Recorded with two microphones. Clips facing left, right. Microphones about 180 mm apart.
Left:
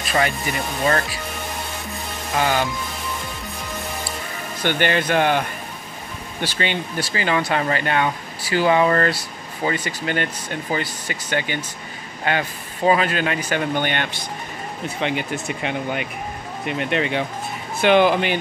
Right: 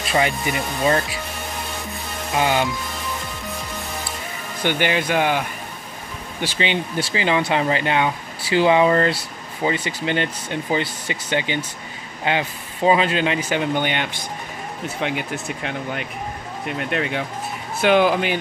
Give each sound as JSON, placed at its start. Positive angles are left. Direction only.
{"t": 0.1, "sound": "speech", "side_deg": -15}
{"t": 2.3, "sound": "speech", "side_deg": -15}
{"t": 4.6, "sound": "speech", "side_deg": -10}
{"t": 6.4, "sound": "speech", "side_deg": -15}
{"t": 15.0, "sound": "speech", "side_deg": -5}